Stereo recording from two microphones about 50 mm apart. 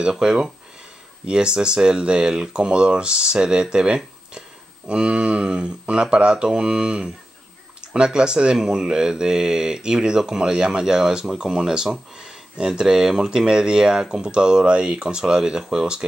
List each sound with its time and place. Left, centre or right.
0.0 s speech: centre